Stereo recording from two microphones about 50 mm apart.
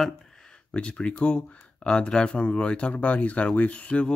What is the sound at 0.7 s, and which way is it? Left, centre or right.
Speech, left.